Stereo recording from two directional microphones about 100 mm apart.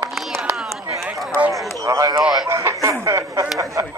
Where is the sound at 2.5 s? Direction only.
25° right (ahead or behind).